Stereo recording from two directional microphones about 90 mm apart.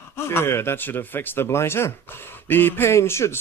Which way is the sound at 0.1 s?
25° left (ahead or behind).